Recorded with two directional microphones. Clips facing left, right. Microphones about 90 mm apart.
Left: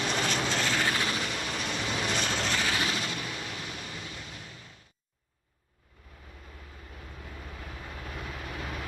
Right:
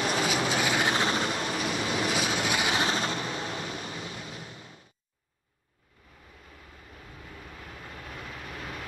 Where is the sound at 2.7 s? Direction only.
35° right (ahead or behind).